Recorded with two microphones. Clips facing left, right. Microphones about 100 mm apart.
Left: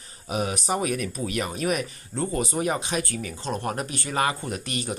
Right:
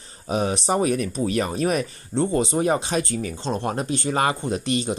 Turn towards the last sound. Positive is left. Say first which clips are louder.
# right 7 dB
turn(degrees=-25)  # may be behind; listen again after turning